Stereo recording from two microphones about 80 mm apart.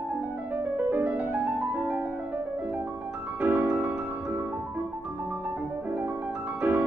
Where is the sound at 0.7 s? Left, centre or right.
Right.